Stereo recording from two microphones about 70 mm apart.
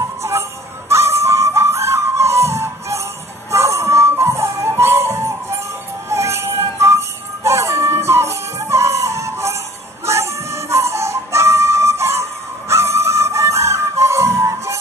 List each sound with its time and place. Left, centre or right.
0.2 s music: right